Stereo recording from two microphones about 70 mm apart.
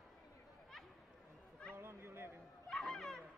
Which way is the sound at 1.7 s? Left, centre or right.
Right.